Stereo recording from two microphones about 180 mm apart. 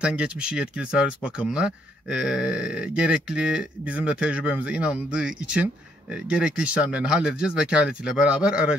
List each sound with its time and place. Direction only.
0.0 s speech: 5° right (ahead or behind)